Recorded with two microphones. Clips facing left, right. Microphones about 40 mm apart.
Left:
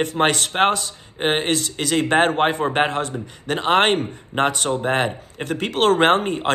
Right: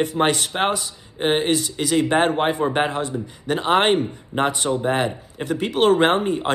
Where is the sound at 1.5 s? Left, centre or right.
Left.